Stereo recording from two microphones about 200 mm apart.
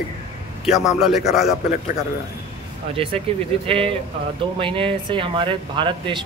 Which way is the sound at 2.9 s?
30° right (ahead or behind).